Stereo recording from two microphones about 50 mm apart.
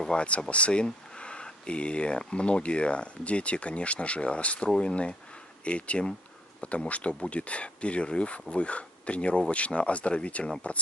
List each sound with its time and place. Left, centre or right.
0.0 s speech: left